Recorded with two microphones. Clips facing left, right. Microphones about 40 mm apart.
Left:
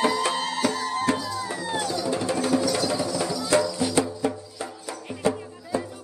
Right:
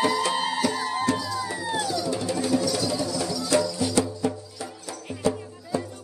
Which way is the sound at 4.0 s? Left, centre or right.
Left.